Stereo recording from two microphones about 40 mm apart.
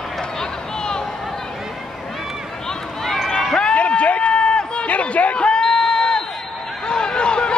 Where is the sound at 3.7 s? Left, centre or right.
Left.